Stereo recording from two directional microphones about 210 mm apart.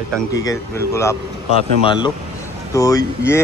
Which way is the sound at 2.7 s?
15° left (ahead or behind).